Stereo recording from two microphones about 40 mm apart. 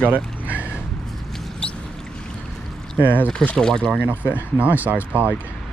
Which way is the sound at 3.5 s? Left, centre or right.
Centre.